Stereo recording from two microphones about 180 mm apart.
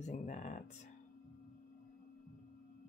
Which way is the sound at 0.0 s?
40° left (ahead or behind).